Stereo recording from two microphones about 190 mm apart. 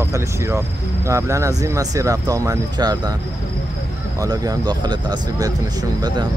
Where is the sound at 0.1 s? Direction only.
15° right (ahead or behind).